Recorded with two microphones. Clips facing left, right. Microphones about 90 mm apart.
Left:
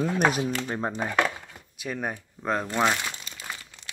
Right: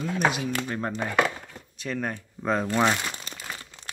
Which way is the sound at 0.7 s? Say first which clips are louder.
Even; 15° left (ahead or behind).